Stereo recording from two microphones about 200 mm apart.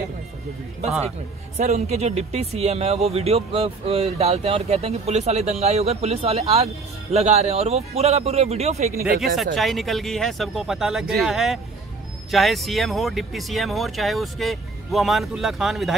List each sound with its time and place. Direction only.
1.6 s speech: 35° right (ahead or behind)
9.4 s speech: centre (ahead or behind)